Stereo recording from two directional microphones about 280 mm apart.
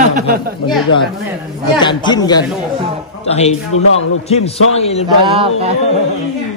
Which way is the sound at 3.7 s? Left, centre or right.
Left.